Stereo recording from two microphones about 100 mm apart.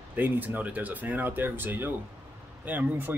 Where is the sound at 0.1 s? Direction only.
20° right (ahead or behind).